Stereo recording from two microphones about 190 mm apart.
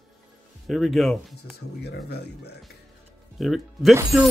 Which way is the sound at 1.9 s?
60° left (ahead or behind).